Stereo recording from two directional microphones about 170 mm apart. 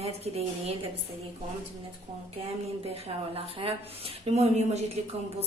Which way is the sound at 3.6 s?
35° right (ahead or behind).